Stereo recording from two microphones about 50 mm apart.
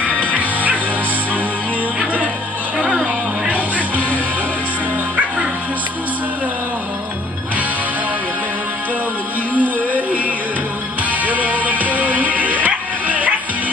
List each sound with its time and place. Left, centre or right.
0.2 s music: right
3.7 s music: right
9.6 s music: right